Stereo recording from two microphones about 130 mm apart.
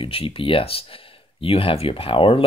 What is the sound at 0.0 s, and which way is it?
Speech, 45° left (ahead or behind).